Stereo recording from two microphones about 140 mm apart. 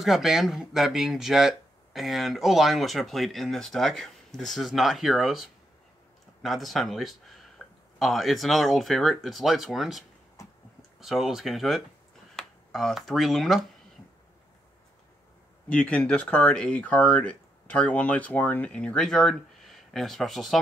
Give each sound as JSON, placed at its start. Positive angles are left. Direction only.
{"t": 0.0, "sound": "speech", "side_deg": 0}
{"t": 10.4, "sound": "a sound", "side_deg": 20}
{"t": 11.0, "sound": "speech", "side_deg": 0}
{"t": 15.7, "sound": "speech", "side_deg": 10}